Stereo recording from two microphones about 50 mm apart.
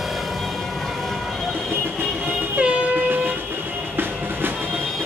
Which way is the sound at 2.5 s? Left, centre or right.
Right.